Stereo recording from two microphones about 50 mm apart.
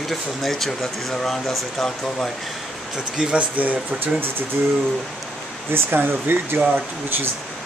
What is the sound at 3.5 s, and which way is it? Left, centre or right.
Speech, right.